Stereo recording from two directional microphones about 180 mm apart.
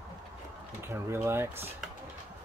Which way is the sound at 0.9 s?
15° right (ahead or behind).